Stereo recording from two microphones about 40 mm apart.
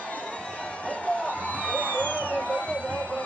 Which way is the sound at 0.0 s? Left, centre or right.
Left.